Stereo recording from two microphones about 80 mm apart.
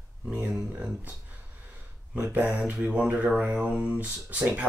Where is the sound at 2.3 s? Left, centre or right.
Centre.